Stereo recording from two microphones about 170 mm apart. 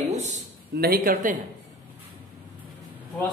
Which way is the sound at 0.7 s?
65° right (ahead or behind).